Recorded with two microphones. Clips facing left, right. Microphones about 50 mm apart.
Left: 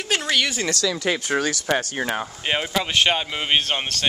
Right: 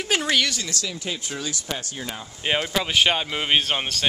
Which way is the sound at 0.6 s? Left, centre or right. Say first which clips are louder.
Left 6 dB; left.